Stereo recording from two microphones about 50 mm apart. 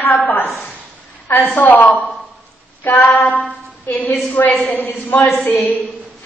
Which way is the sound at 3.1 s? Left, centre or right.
Left.